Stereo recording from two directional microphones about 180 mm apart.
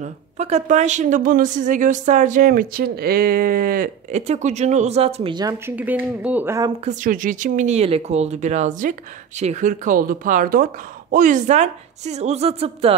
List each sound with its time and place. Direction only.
0.0 s a woman's voice: 40° right (ahead or behind)
4.3 s speech: 40° right (ahead or behind); by 6.7 s 15° right (ahead or behind)
6.8 s a woman's voice: 45° right (ahead or behind)